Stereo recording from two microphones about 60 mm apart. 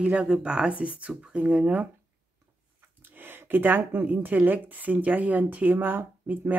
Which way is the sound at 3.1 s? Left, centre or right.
Right.